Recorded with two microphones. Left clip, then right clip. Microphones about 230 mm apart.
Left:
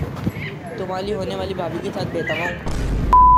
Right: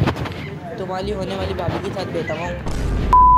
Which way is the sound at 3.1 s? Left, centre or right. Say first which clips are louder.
Even; centre.